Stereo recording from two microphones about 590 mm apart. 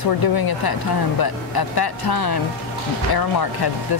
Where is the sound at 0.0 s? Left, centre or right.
Left.